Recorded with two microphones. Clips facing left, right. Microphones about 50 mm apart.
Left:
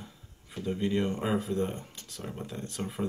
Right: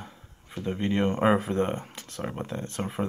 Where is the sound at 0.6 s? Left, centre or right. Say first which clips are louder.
Right 3 dB; right.